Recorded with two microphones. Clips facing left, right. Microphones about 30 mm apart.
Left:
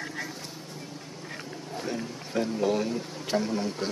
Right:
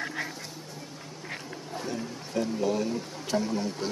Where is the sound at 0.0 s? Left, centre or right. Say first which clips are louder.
Right 2 dB; right.